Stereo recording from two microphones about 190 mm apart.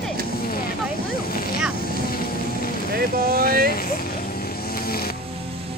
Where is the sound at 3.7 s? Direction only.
50° left (ahead or behind).